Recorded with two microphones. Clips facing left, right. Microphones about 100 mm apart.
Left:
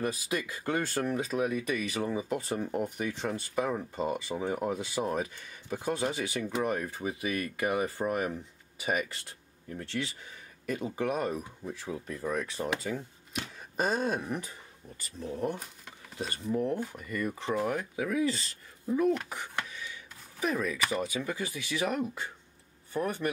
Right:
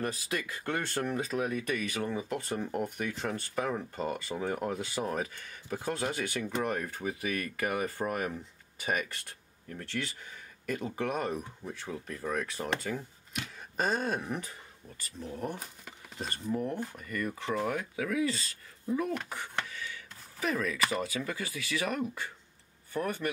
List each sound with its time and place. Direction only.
0.0 s speech: 10° left (ahead or behind)
7.5 s speech: 15° left (ahead or behind)
8.0 s speech: 5° left (ahead or behind)
9.7 s speech: 15° left (ahead or behind)
13.7 s speech: 10° left (ahead or behind)
15.4 s speech: centre (ahead or behind); by 18.4 s 20° left (ahead or behind)
19.2 s a sound: 10° left (ahead or behind)
21.0 s speech: 15° left (ahead or behind)